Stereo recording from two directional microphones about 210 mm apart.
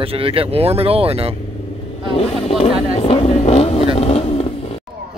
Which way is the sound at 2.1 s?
30° left (ahead or behind).